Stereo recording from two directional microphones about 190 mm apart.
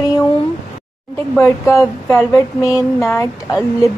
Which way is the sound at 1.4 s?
15° left (ahead or behind).